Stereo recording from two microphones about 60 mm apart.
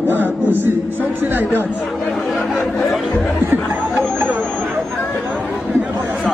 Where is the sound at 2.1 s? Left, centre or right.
Centre.